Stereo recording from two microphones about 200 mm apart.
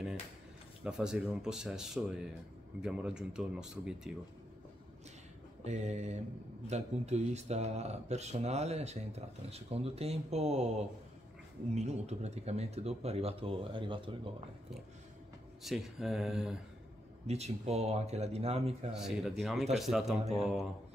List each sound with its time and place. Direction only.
0.8 s speech: 5° right (ahead or behind)
5.6 s speech: 35° right (ahead or behind)
11.7 s speech: 35° right (ahead or behind)
15.6 s speech: centre (ahead or behind)
17.3 s speech: 30° right (ahead or behind)
18.9 s speech: centre (ahead or behind)